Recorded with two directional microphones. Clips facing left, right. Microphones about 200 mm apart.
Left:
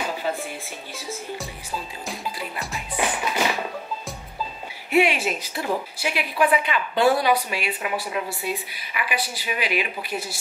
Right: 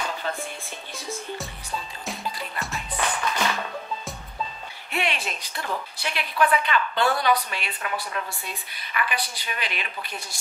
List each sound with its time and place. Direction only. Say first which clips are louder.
0.0 s music: left 3 dB; 10° left (ahead or behind)
4.9 s speech: left 9 dB; 5° left (ahead or behind)